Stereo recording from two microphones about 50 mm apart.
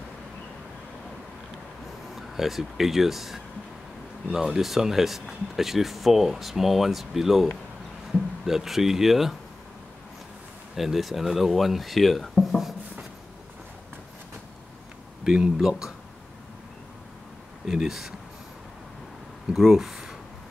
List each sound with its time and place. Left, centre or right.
2.1 s speech: centre
10.8 s speech: centre
15.2 s speech: centre
17.6 s speech: centre
19.5 s speech: centre